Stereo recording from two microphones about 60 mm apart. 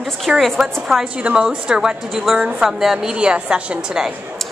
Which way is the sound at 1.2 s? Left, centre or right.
Centre.